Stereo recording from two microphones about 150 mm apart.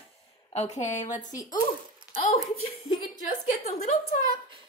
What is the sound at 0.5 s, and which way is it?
Music, 45° left (ahead or behind).